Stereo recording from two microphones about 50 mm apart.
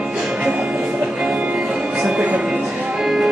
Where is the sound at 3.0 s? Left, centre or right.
Centre.